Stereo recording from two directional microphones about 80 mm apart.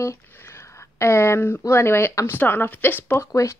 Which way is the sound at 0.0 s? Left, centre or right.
Left.